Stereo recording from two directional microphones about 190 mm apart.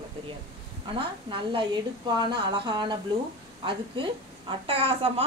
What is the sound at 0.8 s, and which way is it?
A woman's voice, 25° right (ahead or behind).